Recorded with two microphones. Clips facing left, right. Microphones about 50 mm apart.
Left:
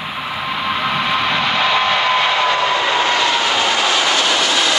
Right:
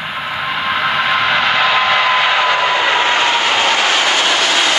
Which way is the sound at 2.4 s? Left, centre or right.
Right.